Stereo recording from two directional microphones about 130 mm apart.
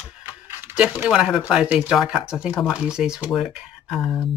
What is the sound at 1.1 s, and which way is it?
Speech, 5° right (ahead or behind).